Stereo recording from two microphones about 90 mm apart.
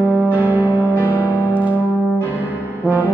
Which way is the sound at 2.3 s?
20° right (ahead or behind).